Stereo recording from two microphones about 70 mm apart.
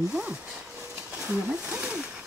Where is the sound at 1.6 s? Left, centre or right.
Right.